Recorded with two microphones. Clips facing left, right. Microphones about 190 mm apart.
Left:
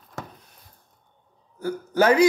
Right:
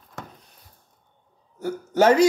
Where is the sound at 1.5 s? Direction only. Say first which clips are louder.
Even; 25° right (ahead or behind).